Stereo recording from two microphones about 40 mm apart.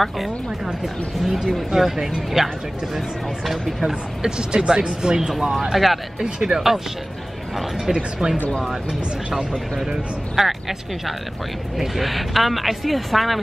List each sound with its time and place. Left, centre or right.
1.2 s speech: centre
4.2 s speech: right
5.4 s speech: centre
6.1 s speech: centre
10.3 s speech: centre